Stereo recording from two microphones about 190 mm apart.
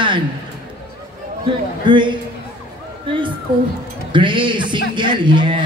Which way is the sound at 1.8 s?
25° right (ahead or behind).